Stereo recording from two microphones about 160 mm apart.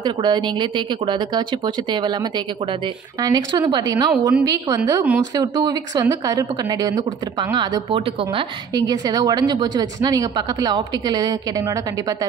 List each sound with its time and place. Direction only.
0.0 s a woman's voice: 25° right (ahead or behind)
8.7 s a woman's voice: 25° right (ahead or behind)